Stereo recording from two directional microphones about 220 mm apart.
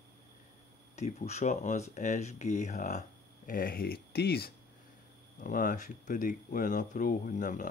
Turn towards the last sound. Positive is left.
turn(degrees=35)  # may be behind; listen again after turning